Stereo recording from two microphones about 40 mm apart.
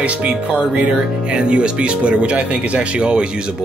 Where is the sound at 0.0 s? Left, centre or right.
Right.